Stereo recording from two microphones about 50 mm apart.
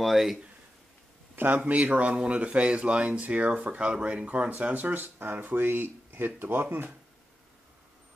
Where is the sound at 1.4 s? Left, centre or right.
Right.